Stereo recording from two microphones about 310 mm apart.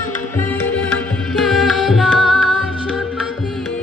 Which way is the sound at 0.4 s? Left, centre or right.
Centre.